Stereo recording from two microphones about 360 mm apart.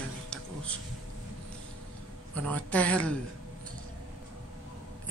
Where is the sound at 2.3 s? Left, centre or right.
Centre.